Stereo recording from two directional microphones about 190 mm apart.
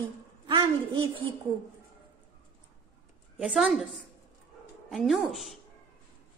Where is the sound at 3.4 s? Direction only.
Centre (ahead or behind).